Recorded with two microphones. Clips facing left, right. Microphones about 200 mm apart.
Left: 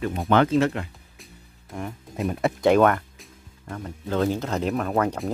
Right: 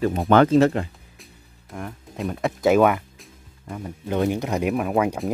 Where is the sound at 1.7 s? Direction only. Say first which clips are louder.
Left 1 dB; centre (ahead or behind).